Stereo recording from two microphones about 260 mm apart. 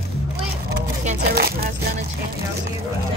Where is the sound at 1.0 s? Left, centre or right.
Right.